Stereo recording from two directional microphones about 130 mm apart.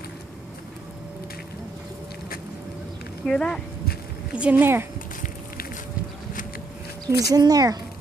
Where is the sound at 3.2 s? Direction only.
5° left (ahead or behind).